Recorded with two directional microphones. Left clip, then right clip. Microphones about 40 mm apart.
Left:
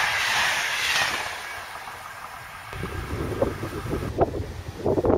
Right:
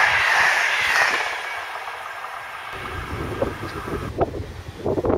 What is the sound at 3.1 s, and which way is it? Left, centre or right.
Vehicle, left.